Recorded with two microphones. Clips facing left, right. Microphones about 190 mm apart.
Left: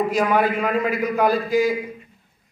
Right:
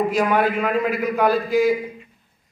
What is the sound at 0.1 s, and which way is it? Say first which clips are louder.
A man's voice: even; centre (ahead or behind).